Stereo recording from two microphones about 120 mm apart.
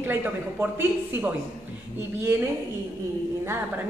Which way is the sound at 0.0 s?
15° right (ahead or behind).